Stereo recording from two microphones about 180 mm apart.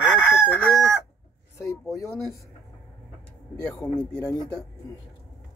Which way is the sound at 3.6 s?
15° left (ahead or behind).